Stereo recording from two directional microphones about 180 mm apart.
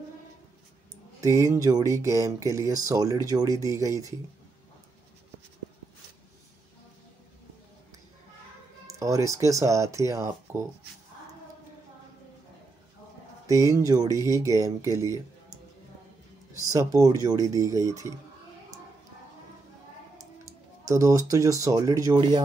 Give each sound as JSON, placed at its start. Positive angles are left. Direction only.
{"t": 1.2, "sound": "speech", "side_deg": -15}
{"t": 8.8, "sound": "speech", "side_deg": -15}
{"t": 13.5, "sound": "speech", "side_deg": -20}
{"t": 16.7, "sound": "speech", "side_deg": -20}
{"t": 20.8, "sound": "speech", "side_deg": -15}